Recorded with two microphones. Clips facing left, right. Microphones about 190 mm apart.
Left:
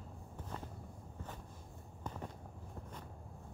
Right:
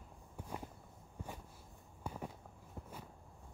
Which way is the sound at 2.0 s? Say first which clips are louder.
Right 1 dB; 10° right (ahead or behind).